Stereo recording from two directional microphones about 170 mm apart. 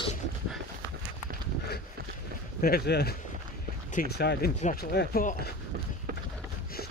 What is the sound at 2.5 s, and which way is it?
Speech, 65° left (ahead or behind).